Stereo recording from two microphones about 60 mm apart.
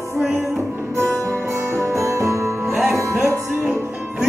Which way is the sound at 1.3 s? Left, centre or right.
Right.